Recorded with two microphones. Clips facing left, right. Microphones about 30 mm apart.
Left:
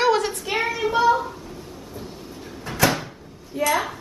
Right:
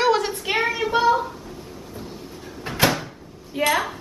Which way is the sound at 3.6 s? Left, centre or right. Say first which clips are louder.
Right 1 dB; right.